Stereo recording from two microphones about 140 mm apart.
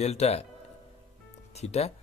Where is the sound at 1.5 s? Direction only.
50° left (ahead or behind).